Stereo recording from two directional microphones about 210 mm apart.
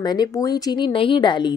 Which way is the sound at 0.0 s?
20° left (ahead or behind).